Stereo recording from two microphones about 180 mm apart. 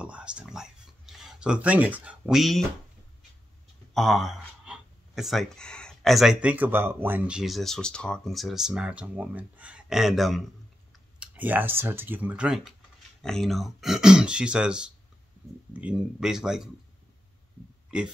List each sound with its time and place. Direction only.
0.0 s speech: 5° right (ahead or behind)
3.9 s speech: centre (ahead or behind)